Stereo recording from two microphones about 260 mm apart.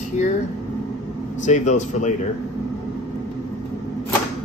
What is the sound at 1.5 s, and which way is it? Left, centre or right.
Speech, left.